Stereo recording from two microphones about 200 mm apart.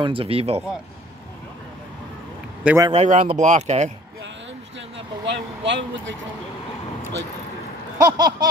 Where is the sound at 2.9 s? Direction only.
35° right (ahead or behind).